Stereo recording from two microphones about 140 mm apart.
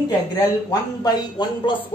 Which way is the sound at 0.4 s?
25° left (ahead or behind).